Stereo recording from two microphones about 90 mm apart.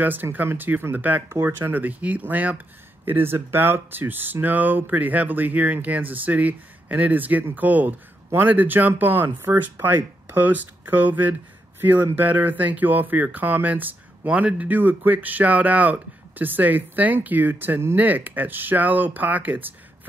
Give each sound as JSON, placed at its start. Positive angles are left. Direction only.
{"t": 0.0, "sound": "speech", "side_deg": -20}